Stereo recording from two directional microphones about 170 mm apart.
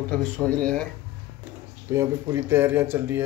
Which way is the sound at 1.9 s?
15° right (ahead or behind).